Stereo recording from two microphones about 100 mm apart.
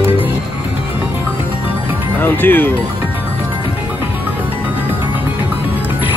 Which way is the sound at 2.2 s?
20° left (ahead or behind).